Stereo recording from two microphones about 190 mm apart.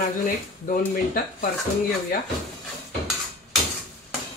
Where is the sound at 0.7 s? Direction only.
45° left (ahead or behind).